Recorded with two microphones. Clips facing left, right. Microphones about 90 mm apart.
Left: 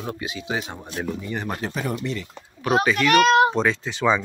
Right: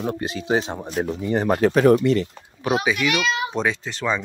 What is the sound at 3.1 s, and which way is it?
Speech, 50° left (ahead or behind).